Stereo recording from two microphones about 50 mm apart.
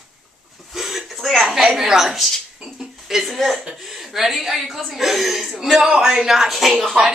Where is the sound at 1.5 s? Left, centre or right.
Centre.